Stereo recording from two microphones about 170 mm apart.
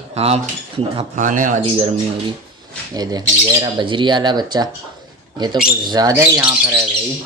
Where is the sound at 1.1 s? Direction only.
50° right (ahead or behind).